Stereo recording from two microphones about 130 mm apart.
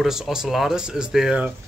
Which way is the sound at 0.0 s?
5° right (ahead or behind).